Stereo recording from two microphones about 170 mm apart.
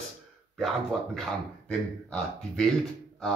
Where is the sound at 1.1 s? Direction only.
5° left (ahead or behind).